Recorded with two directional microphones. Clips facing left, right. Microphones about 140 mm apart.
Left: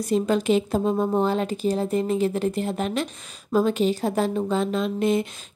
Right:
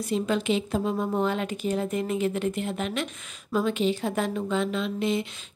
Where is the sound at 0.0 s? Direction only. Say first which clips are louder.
Left 4 dB; 40° left (ahead or behind).